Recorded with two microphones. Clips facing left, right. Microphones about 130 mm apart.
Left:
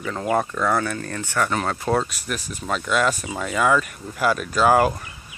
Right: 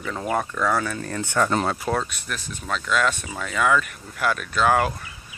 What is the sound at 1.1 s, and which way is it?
Speech, 15° right (ahead or behind).